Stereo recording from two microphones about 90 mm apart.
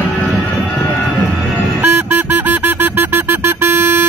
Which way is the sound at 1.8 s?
25° right (ahead or behind).